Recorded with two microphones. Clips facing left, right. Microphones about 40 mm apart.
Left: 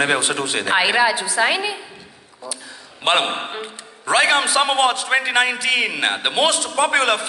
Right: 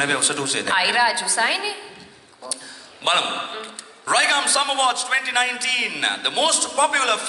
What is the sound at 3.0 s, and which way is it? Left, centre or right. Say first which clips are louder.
Speech: left 2 dB; left.